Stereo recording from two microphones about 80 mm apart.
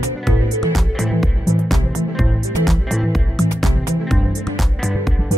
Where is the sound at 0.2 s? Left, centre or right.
Centre.